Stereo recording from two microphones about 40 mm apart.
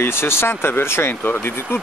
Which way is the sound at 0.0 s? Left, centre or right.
Left.